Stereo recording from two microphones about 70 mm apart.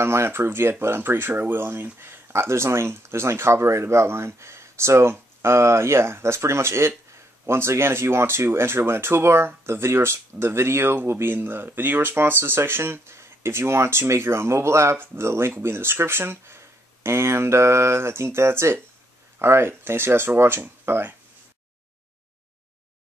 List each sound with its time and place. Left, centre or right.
0.0 s speech: right